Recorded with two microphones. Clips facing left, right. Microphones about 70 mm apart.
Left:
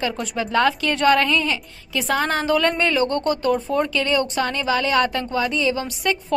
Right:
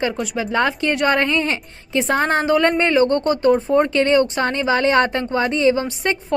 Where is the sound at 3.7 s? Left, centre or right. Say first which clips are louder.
Right 5 dB; right.